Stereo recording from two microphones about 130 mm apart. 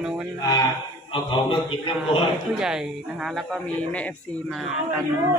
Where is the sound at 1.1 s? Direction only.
40° left (ahead or behind).